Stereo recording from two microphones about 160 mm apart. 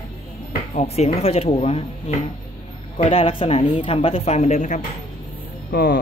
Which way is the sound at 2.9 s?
35° left (ahead or behind).